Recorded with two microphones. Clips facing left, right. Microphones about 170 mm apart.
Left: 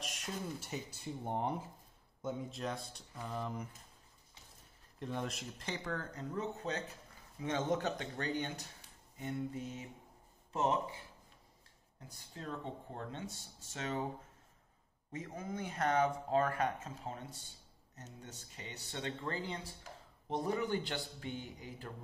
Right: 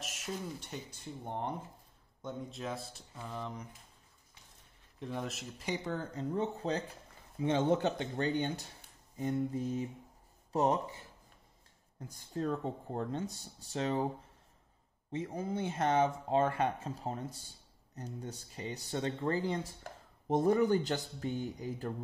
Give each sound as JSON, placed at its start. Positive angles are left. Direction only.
{"t": 0.0, "sound": "speech", "side_deg": -5}
{"t": 4.9, "sound": "speech", "side_deg": 0}
{"t": 5.7, "sound": "speech", "side_deg": -25}
{"t": 12.4, "sound": "speech", "side_deg": -40}
{"t": 15.1, "sound": "speech", "side_deg": -30}
{"t": 19.5, "sound": "speech", "side_deg": -45}